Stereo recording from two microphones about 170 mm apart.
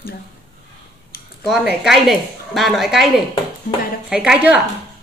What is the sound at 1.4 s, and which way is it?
Speech, centre (ahead or behind).